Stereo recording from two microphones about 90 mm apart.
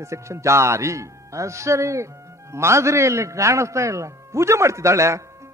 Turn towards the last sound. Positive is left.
turn(degrees=-35)  # may be behind; listen again after turning